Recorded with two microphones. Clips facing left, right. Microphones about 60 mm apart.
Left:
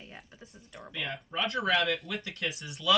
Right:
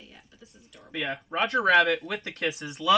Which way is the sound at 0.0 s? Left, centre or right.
Left.